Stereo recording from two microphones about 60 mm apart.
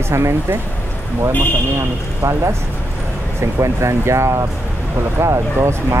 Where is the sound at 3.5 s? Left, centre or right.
Right.